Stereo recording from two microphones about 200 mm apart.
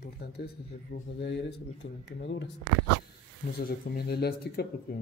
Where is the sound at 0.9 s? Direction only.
55° left (ahead or behind).